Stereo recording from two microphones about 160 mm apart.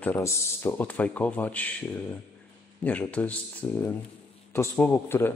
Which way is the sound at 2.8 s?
10° left (ahead or behind).